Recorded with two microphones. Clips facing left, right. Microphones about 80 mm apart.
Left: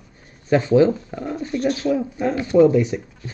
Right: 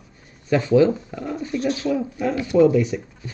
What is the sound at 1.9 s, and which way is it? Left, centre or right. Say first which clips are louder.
Speech: left 2 dB; left.